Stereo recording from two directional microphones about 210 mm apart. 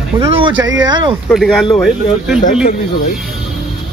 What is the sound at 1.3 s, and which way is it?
Speech, centre (ahead or behind).